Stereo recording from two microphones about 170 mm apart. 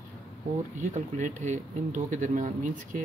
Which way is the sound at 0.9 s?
45° right (ahead or behind).